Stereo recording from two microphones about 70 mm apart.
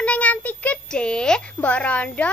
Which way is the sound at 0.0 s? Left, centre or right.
Centre.